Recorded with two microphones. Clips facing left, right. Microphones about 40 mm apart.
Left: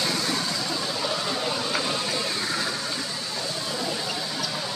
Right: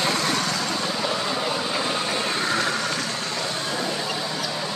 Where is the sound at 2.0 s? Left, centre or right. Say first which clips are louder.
Right 4 dB; right.